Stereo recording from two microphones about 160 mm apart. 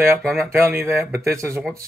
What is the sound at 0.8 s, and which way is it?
Speech, 15° right (ahead or behind).